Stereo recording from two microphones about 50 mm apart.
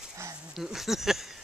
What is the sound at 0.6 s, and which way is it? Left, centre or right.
Speech, centre.